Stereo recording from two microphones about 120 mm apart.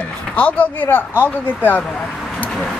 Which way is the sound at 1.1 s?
15° right (ahead or behind).